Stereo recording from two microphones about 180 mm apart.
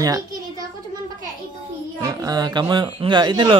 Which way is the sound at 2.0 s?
20° right (ahead or behind).